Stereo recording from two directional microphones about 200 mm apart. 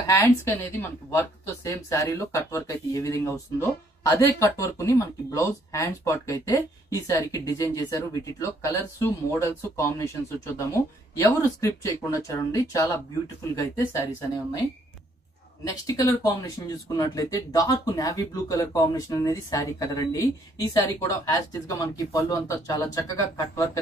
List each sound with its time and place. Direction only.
0.0 s speech: 15° left (ahead or behind)
15.6 s speech: 15° left (ahead or behind)